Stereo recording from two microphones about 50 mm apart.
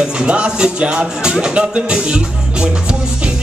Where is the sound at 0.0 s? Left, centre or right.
Centre.